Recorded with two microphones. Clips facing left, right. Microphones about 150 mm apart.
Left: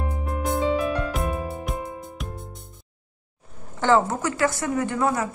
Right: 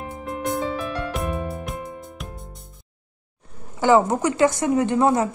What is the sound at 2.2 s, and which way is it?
Music, centre (ahead or behind).